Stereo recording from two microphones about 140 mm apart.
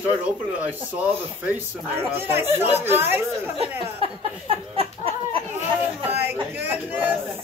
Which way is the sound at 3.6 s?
45° right (ahead or behind).